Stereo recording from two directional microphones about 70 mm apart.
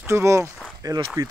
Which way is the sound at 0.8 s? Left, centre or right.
Right.